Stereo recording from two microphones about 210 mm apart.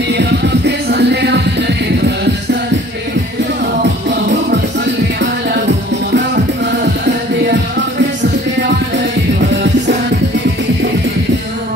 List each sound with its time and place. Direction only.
0.1 s music: 55° right (ahead or behind)
6.1 s music: 55° right (ahead or behind)